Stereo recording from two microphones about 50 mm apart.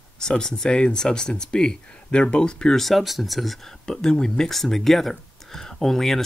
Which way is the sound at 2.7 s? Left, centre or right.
Centre.